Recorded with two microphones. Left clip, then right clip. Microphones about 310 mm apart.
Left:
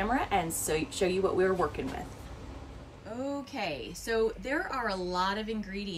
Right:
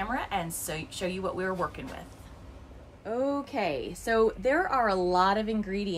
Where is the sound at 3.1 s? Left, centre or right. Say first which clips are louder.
Right 7 dB; centre.